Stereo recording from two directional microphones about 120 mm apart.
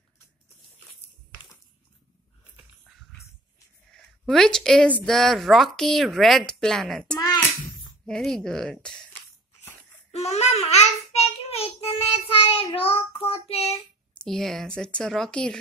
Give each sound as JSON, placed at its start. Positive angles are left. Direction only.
{"t": 3.9, "sound": "a woman's voice", "side_deg": 5}
{"t": 10.1, "sound": "child singing", "side_deg": 65}
{"t": 12.1, "sound": "child singing", "side_deg": 50}
{"t": 14.2, "sound": "speech", "side_deg": 0}